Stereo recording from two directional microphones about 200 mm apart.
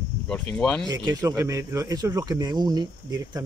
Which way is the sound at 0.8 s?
20° right (ahead or behind).